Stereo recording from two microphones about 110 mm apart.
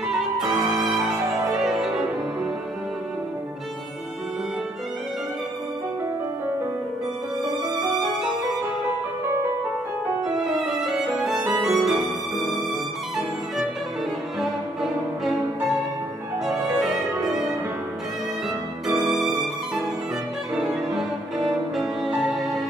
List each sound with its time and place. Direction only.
0.5 s violin: 25° right (ahead or behind)
1.7 s music: 5° right (ahead or behind)
10.9 s violin: 5° right (ahead or behind)
11.6 s music: centre (ahead or behind)
14.4 s music: 5° right (ahead or behind)
16.4 s music: 5° right (ahead or behind)
18.9 s music: 35° right (ahead or behind)
19.2 s violin: centre (ahead or behind)
20.5 s cello: 5° right (ahead or behind)